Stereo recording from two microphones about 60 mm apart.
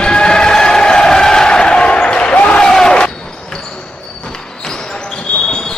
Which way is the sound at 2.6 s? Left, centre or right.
Centre.